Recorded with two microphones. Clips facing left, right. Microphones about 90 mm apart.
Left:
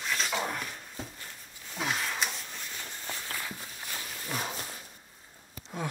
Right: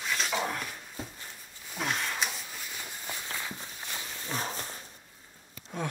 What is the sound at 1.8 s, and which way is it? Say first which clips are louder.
Walk: even; centre (ahead or behind).